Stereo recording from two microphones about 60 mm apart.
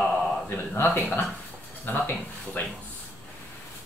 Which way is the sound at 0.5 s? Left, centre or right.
Left.